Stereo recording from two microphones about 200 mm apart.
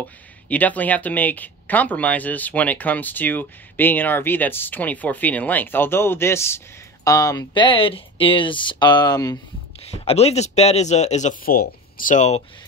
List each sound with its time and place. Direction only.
0.5 s speech: 10° left (ahead or behind)
10.0 s speech: 30° left (ahead or behind)